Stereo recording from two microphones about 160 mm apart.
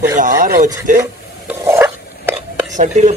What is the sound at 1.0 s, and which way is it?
Stir, 15° right (ahead or behind).